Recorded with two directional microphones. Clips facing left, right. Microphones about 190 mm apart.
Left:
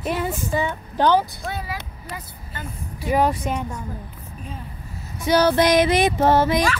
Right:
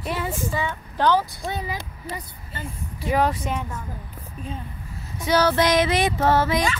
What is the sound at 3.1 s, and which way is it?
Female singing, 10° left (ahead or behind).